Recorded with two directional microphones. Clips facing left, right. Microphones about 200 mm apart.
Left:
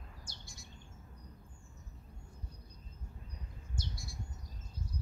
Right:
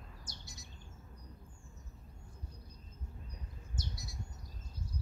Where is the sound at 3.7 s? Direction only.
20° right (ahead or behind).